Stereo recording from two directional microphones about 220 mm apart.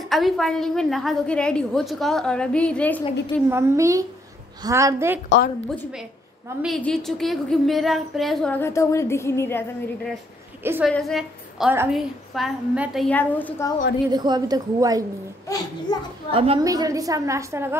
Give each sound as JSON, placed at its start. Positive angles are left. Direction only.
{"t": 0.1, "sound": "a woman's voice", "side_deg": 0}
{"t": 3.4, "sound": "a woman's voice", "side_deg": -10}
{"t": 6.6, "sound": "a woman's voice", "side_deg": 0}
{"t": 10.6, "sound": "a woman's voice", "side_deg": -10}
{"t": 10.9, "sound": "a woman's voice", "side_deg": 0}
{"t": 14.1, "sound": "a woman's voice", "side_deg": -20}
{"t": 15.4, "sound": "a child's voice", "side_deg": 15}
{"t": 16.3, "sound": "a woman's voice", "side_deg": -25}